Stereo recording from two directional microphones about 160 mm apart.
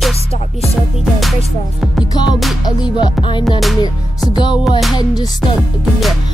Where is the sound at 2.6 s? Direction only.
30° left (ahead or behind).